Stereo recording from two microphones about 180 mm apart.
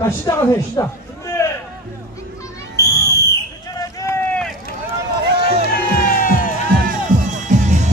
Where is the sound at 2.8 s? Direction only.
15° left (ahead or behind).